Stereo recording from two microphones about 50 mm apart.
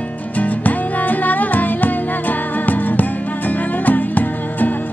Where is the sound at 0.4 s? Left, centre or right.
Left.